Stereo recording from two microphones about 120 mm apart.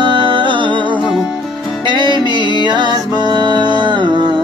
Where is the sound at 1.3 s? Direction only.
Centre (ahead or behind).